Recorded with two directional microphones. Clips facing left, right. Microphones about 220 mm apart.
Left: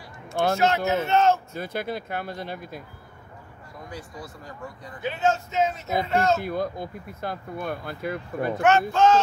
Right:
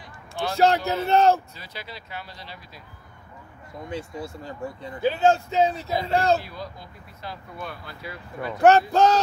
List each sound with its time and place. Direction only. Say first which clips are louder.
0.6 s speech: right 1 dB; 35° right (ahead or behind)
1.5 s speech: left 11 dB; 50° left (ahead or behind)
3.9 s speech: right 7 dB; 25° right (ahead or behind)
6.4 s speech: left 10 dB; 50° left (ahead or behind)
8.6 s speech: right 3 dB; 35° right (ahead or behind)